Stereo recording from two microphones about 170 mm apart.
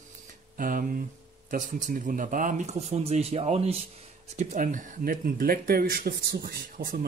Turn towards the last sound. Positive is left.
turn(degrees=-60)  # may be behind; listen again after turning